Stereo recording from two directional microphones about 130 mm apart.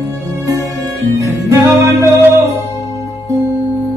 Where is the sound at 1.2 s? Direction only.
25° right (ahead or behind).